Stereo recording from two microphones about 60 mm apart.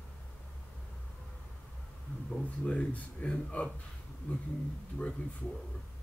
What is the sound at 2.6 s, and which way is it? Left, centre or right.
Speech, left.